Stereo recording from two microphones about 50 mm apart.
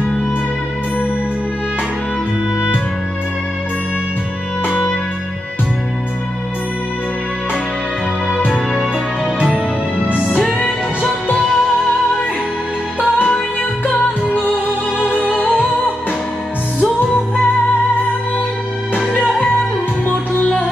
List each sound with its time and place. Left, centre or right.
11.3 s music: centre
15.0 s music: left
18.9 s music: left